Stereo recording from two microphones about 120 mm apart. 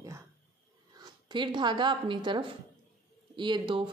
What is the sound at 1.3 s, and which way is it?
A woman's voice, 40° right (ahead or behind).